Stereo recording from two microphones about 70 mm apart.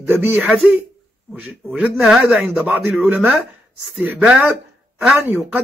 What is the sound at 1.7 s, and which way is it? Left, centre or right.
Speech, centre.